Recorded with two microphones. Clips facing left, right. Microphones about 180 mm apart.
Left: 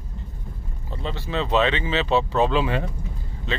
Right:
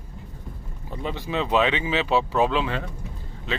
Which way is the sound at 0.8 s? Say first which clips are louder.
Right 1 dB; 15° right (ahead or behind).